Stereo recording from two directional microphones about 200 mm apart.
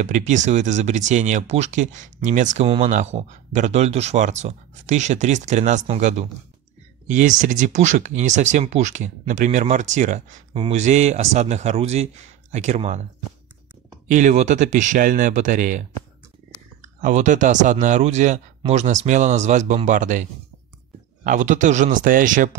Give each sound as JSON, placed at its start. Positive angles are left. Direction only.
{"t": 0.0, "sound": "speech", "side_deg": -35}
{"t": 14.0, "sound": "speech", "side_deg": -35}
{"t": 17.0, "sound": "speech", "side_deg": -40}